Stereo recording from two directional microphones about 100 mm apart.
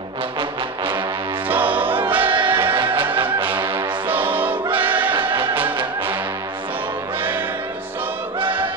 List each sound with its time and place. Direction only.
0.4 s brass instrument: 55° right (ahead or behind)
1.5 s music: 15° right (ahead or behind)
2.2 s music: 60° right (ahead or behind)
2.9 s music: 20° right (ahead or behind)
4.7 s choir: 15° right (ahead or behind)
7.2 s music: 20° right (ahead or behind)